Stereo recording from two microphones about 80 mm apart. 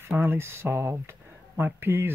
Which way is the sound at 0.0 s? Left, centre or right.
Right.